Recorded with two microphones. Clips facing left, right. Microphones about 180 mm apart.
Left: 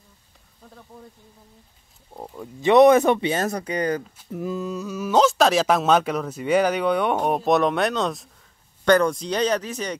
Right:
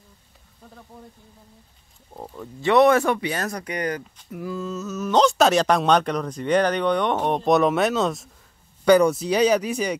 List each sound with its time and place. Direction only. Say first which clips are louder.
2.1 s speech: even; 10° left (ahead or behind); by 9.9 s 10° right (ahead or behind)